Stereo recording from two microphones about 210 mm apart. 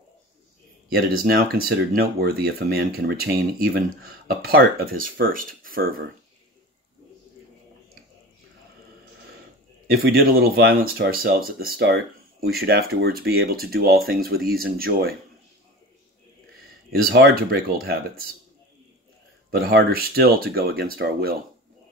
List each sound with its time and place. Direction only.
1.2 s speech: 45° right (ahead or behind)
9.8 s speech: 45° right (ahead or behind)
16.9 s speech: 45° right (ahead or behind)
19.5 s speech: 45° right (ahead or behind)